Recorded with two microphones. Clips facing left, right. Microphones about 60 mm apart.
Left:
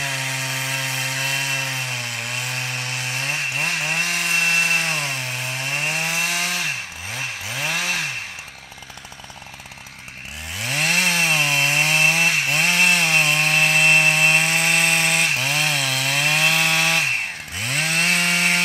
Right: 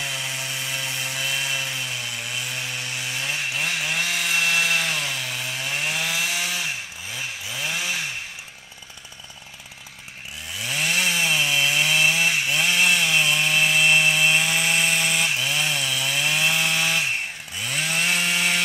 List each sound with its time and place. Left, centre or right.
0.0 s sawing: left
10.6 s chainsaw: left